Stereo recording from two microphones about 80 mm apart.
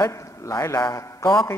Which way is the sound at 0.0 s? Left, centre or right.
Left.